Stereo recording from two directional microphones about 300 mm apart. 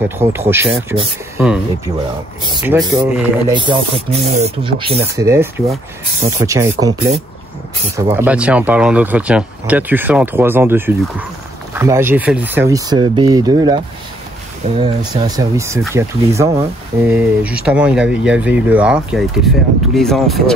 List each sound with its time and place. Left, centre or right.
0.2 s speech: centre
14.8 s speech: centre